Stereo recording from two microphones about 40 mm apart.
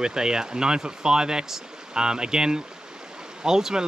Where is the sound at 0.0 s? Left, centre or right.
Centre.